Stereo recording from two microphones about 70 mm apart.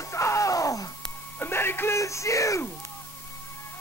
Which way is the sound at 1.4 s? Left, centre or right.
Left.